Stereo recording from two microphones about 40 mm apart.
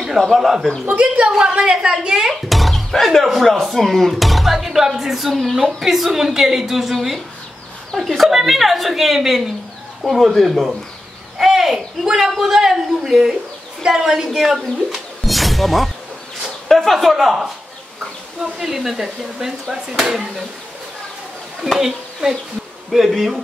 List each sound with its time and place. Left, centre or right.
0.0 s speech: centre
1.5 s a woman's voice: right
2.5 s a woman's voice: centre
11.3 s a woman's voice: centre
21.7 s a woman's voice: centre